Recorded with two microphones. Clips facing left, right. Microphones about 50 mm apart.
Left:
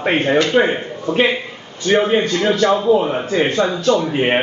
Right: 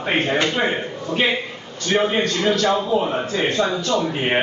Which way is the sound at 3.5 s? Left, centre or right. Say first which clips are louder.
Left 4 dB; left.